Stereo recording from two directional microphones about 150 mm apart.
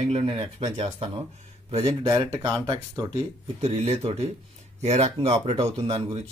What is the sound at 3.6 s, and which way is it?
Speech, 45° right (ahead or behind).